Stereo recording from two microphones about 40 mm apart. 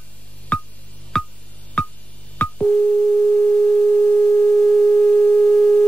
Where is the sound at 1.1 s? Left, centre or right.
Centre.